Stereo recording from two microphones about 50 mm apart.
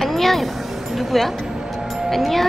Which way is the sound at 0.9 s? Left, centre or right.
Centre.